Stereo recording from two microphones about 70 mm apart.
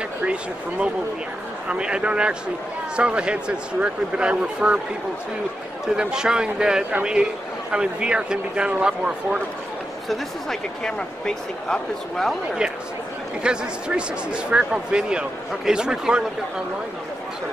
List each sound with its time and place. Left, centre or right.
0.2 s speech: centre
5.9 s speech: centre
10.0 s speech: centre
13.4 s speech: centre